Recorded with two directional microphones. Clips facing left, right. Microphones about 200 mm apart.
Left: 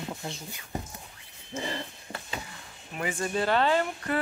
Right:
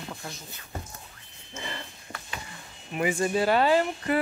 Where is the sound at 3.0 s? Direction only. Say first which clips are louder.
Right 4 dB; 10° right (ahead or behind).